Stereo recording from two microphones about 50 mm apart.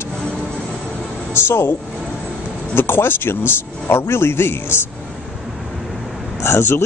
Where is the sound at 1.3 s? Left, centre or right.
Left.